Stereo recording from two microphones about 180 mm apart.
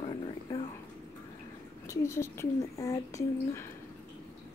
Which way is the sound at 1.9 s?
15° left (ahead or behind).